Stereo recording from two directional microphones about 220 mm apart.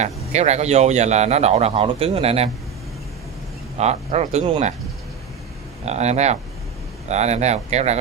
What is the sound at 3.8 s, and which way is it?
Speech, 30° right (ahead or behind).